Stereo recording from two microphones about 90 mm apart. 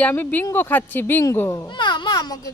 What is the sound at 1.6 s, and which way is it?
Speech, 60° left (ahead or behind).